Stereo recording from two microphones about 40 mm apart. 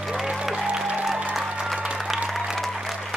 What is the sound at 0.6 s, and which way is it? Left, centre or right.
Music, right.